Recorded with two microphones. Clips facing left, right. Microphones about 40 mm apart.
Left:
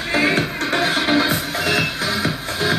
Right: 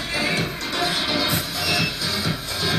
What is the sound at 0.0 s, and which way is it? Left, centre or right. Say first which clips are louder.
Music: left 6 dB; left.